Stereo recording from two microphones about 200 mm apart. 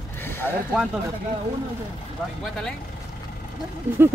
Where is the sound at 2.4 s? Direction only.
Centre (ahead or behind).